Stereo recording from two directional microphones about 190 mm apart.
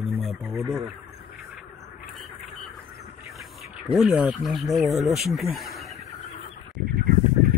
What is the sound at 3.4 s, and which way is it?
Speech, centre (ahead or behind).